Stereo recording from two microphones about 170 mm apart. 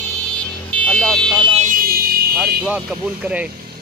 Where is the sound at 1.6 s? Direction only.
55° right (ahead or behind).